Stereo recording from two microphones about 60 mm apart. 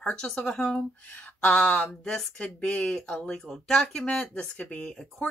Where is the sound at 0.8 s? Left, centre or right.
Left.